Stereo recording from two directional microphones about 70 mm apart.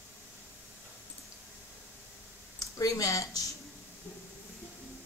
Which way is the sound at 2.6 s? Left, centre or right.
Left.